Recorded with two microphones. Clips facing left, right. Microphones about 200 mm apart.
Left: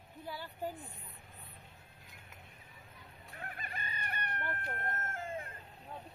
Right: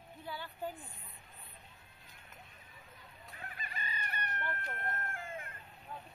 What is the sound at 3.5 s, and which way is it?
Chicken, 55° left (ahead or behind).